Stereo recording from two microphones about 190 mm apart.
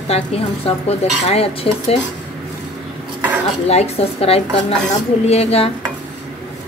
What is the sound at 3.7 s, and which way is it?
Speech, 35° left (ahead or behind).